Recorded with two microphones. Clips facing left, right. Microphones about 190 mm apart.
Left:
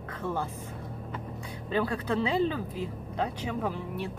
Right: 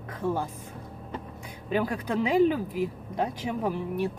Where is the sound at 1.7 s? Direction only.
15° right (ahead or behind).